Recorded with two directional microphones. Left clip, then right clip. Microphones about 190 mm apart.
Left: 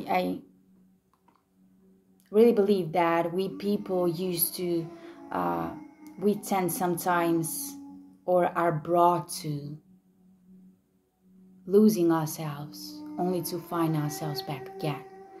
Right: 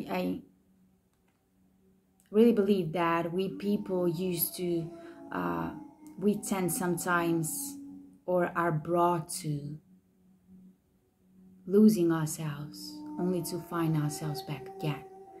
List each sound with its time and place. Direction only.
0.0 s speech: 15° right (ahead or behind)
2.3 s speech: 20° right (ahead or behind)
11.6 s speech: 20° right (ahead or behind)